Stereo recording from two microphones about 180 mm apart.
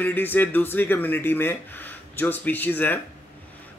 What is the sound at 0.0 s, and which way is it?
Speech, 10° left (ahead or behind).